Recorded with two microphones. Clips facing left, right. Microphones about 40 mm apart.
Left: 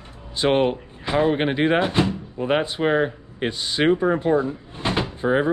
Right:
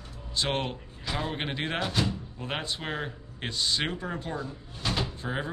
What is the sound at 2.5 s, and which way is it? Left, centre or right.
Speech, centre.